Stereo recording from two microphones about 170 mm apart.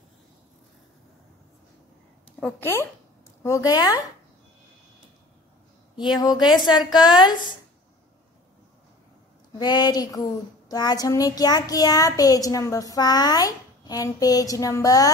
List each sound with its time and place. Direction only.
2.4 s a child's voice: 15° left (ahead or behind)
6.1 s a child's voice: 25° left (ahead or behind)
9.6 s a child's voice: 25° left (ahead or behind)